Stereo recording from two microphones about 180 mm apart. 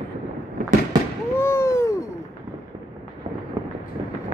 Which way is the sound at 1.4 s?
15° left (ahead or behind).